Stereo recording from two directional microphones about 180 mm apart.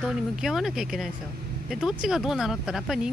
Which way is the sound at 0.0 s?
Centre (ahead or behind).